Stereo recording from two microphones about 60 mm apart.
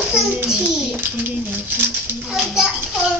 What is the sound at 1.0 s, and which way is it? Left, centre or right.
Speech, right.